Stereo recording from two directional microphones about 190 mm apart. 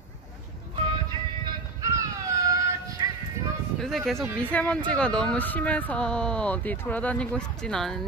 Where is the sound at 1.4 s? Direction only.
15° right (ahead or behind).